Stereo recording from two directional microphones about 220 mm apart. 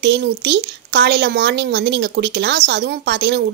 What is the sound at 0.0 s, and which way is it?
Speech, 50° right (ahead or behind).